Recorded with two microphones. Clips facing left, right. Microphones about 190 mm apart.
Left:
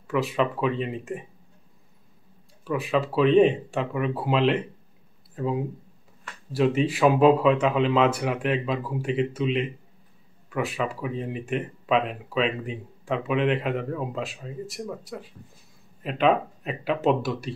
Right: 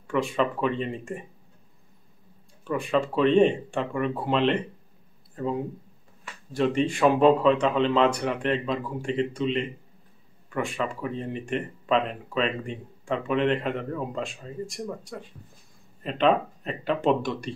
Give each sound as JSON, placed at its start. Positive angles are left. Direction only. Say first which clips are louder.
{"t": 0.1, "sound": "speech", "louder": "even", "side_deg": 5}
{"t": 2.6, "sound": "speech", "louder": "even", "side_deg": 5}